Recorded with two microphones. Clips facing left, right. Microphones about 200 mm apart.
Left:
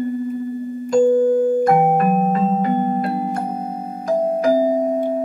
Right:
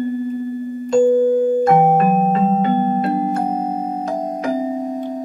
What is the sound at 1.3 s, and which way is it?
Music, 25° right (ahead or behind).